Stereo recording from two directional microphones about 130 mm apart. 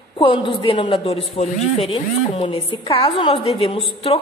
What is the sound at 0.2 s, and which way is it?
A woman's voice, 40° left (ahead or behind).